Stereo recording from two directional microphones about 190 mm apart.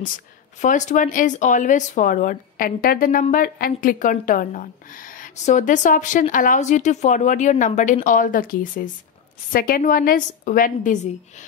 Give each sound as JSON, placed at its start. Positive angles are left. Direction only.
{"t": 0.6, "sound": "speech", "side_deg": 40}